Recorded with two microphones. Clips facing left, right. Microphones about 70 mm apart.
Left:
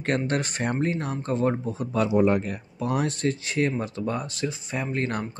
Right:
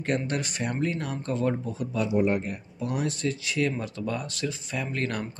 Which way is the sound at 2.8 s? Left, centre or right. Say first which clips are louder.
Left 3 dB; left.